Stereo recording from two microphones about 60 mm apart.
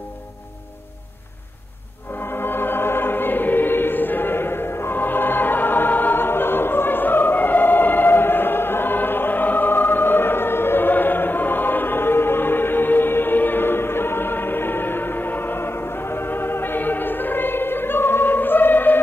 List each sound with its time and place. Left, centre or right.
2.1 s choir: left